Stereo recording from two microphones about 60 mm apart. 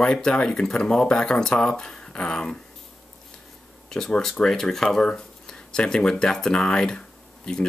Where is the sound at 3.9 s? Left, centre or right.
Centre.